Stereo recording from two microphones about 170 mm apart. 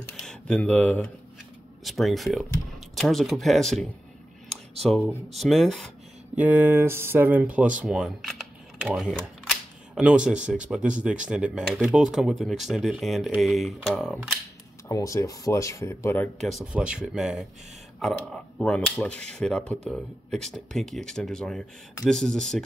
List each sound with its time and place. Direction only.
0.2 s speech: 5° left (ahead or behind)
6.3 s speech: 10° right (ahead or behind)
14.9 s speech: 20° left (ahead or behind)
16.3 s speech: 5° right (ahead or behind)